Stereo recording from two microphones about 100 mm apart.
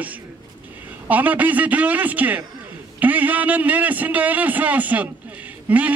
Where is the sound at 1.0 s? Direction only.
15° right (ahead or behind).